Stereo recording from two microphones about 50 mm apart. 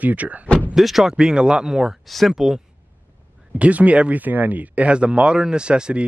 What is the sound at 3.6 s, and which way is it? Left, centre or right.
Speech, right.